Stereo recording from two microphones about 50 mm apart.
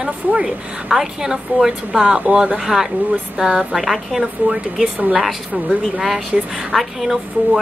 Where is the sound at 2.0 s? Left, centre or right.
Right.